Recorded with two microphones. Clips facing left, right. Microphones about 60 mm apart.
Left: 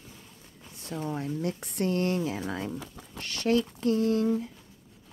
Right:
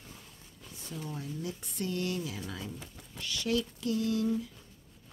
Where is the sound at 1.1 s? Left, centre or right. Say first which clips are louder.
Left 8 dB; left.